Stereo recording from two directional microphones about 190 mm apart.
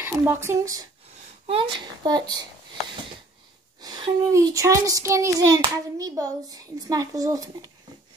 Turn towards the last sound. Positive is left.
turn(degrees=-20)  # may be behind; listen again after turning